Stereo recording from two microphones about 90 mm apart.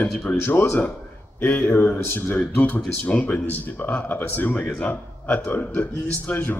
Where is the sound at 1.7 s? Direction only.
25° left (ahead or behind).